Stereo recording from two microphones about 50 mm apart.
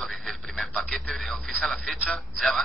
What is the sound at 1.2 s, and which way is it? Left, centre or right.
Speech, centre.